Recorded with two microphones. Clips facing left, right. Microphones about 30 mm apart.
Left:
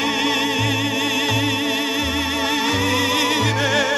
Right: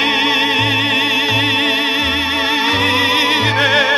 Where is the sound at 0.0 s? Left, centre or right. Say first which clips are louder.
Right 6 dB; right.